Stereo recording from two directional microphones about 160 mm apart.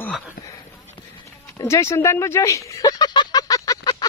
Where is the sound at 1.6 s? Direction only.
20° left (ahead or behind).